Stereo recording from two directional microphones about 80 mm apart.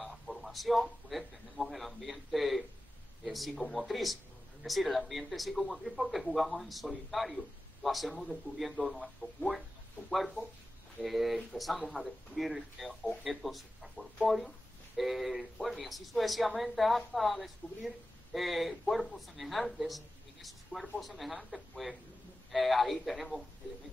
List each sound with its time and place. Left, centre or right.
0.0 s a man's voice: centre